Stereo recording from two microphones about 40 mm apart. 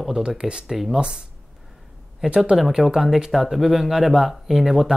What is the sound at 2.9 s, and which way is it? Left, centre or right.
Speech, centre.